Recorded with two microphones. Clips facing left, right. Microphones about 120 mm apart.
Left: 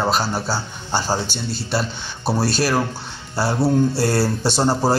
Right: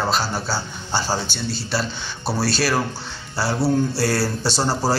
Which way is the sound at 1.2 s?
50° left (ahead or behind).